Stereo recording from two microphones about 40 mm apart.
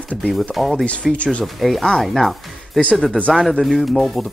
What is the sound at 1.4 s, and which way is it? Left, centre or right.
Speech, centre.